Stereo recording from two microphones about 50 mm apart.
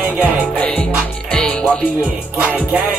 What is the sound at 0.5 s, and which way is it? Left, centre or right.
Music, left.